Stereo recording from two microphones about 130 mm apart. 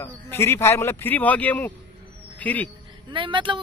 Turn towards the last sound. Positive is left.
turn(degrees=-40)  # may be behind; listen again after turning